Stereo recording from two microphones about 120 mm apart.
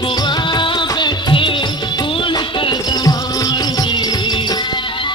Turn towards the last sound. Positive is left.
turn(degrees=40)  # may be behind; listen again after turning